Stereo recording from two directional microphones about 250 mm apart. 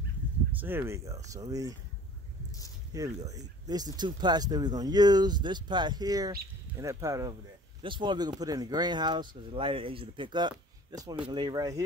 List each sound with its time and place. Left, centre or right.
0.6 s speech: centre
2.9 s speech: centre